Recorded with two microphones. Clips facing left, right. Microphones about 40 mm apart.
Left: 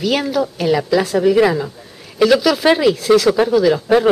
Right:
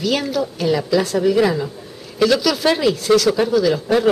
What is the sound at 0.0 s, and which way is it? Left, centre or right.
A woman's voice, centre.